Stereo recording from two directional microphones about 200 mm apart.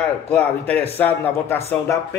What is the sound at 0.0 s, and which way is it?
A man's voice, 5° left (ahead or behind).